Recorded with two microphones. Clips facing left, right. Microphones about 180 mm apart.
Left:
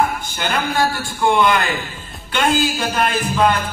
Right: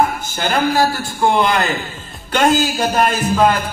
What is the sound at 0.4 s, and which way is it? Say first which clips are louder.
A man's voice: right 4 dB; 40° right (ahead or behind).